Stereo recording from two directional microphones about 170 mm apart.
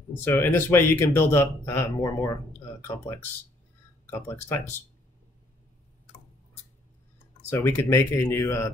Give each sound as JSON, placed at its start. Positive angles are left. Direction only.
{"t": 0.2, "sound": "speech", "side_deg": 10}
{"t": 4.0, "sound": "speech", "side_deg": 15}
{"t": 7.4, "sound": "speech", "side_deg": 15}